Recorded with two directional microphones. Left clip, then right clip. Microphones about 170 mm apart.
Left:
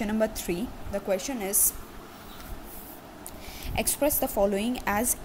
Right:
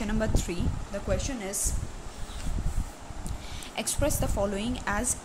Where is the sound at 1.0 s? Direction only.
30° left (ahead or behind).